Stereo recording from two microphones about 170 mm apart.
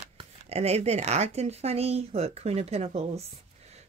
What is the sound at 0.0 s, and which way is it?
Speech, 35° right (ahead or behind).